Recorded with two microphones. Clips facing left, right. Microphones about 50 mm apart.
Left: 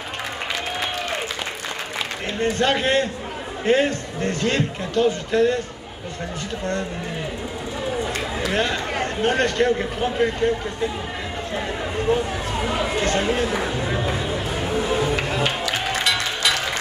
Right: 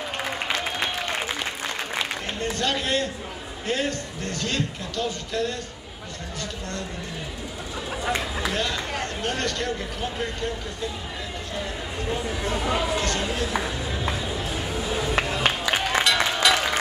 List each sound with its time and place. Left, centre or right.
2.4 s speech: left
8.5 s speech: left
12.1 s speech: left
12.8 s run: left
15.8 s music: centre